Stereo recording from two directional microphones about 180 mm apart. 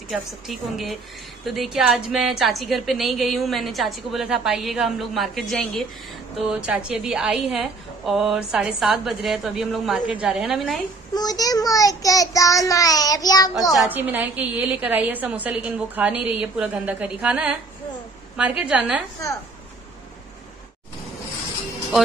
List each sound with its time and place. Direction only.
0.1 s a woman's voice: centre (ahead or behind)
11.1 s child singing: 20° left (ahead or behind)
13.7 s a woman's voice: 10° right (ahead or behind)
18.6 s a woman's voice: 5° right (ahead or behind)